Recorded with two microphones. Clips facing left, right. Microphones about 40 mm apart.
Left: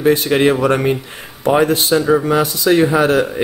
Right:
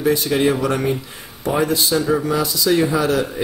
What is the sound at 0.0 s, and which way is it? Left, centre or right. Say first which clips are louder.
Speech: left 4 dB; left.